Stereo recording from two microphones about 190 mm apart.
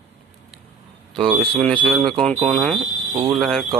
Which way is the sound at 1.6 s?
5° left (ahead or behind).